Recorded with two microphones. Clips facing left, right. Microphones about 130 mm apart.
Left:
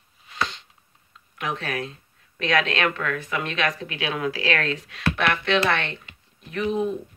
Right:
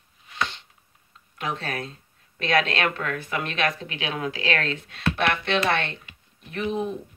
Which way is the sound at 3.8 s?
30° right (ahead or behind).